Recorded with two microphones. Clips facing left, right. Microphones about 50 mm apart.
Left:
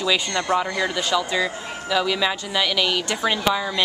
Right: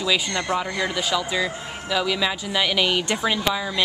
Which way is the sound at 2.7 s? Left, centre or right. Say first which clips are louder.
Right 2 dB; centre.